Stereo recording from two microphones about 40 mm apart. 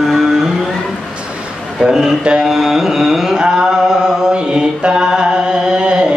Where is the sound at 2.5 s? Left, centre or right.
Centre.